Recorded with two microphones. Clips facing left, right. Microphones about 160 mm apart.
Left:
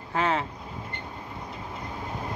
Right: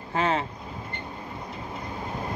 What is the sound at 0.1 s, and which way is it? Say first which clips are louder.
Vehicle: right 1 dB; 25° right (ahead or behind).